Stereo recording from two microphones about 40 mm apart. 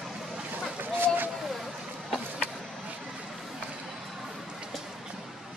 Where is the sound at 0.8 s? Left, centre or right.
Right.